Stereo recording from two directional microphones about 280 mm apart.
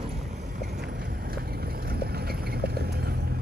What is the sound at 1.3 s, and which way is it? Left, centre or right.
Clip-clop, right.